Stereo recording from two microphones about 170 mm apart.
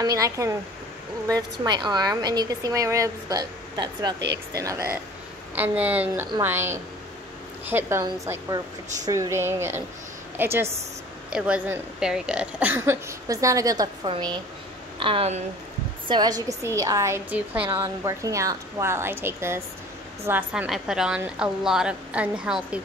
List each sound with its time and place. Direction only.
0.0 s a woman's voice: 20° right (ahead or behind); by 15.4 s 35° right (ahead or behind)
16.1 s a woman's voice: 25° right (ahead or behind); by 22.8 s 5° right (ahead or behind)